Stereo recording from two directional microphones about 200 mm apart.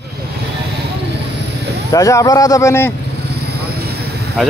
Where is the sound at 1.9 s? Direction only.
15° left (ahead or behind).